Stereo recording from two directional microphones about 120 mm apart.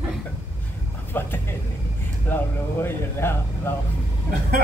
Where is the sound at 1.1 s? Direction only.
15° left (ahead or behind).